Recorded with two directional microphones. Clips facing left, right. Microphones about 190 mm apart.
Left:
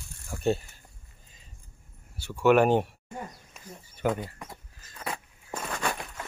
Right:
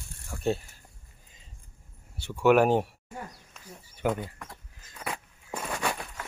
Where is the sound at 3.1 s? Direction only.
15° left (ahead or behind).